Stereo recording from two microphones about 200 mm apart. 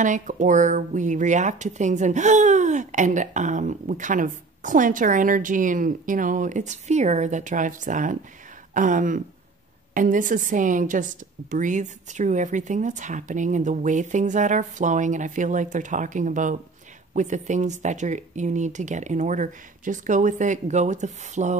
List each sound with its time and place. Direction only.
0.0 s speech: 40° right (ahead or behind)